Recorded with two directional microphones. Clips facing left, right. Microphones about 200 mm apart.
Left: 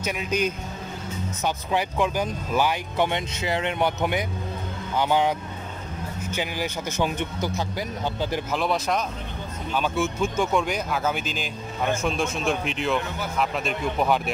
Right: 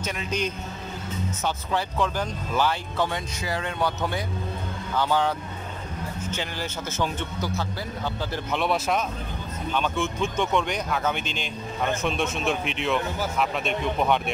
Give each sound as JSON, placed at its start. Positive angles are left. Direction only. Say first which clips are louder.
{"t": 0.0, "sound": "speech", "louder": "left 3 dB", "side_deg": 10}
{"t": 6.3, "sound": "speech", "louder": "left 6 dB", "side_deg": 10}
{"t": 8.5, "sound": "speech", "louder": "right 3 dB", "side_deg": 0}